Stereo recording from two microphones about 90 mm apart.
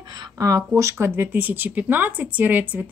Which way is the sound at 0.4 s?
40° right (ahead or behind).